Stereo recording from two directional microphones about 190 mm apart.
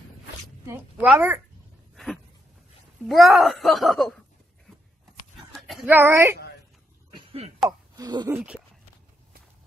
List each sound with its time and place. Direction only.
1.0 s a child's voice: 5° right (ahead or behind)
3.0 s speech: centre (ahead or behind)
5.6 s speech: centre (ahead or behind)
7.2 s a sound: 30° right (ahead or behind)
7.9 s speech: 20° right (ahead or behind)
8.3 s a child's voice: 5° right (ahead or behind)